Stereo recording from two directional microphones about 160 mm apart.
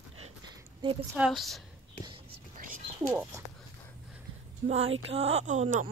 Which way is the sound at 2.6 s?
55° right (ahead or behind).